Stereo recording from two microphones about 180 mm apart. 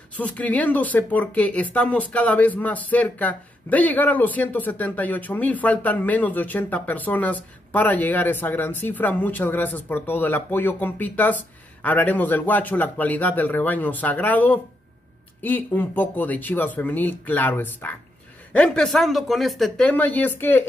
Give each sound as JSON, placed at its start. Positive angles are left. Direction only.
{"t": 0.1, "sound": "speech", "side_deg": 10}